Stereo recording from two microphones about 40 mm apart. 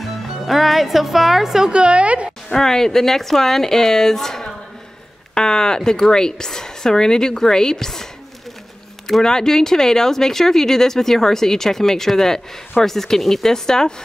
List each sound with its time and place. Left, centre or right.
0.0 s speech: centre
1.7 s a woman's voice: right
2.5 s speech: centre
9.2 s speech: centre